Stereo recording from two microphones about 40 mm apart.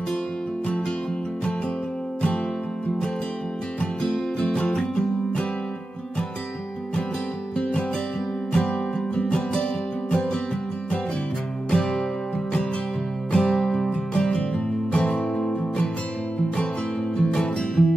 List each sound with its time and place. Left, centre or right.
4.0 s music: centre
8.5 s music: left
11.7 s music: centre
13.3 s music: left
17.2 s music: left